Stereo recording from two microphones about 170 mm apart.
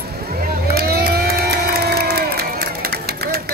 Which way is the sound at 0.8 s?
60° right (ahead or behind).